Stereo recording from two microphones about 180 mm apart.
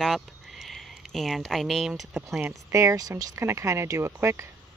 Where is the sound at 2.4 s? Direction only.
15° right (ahead or behind).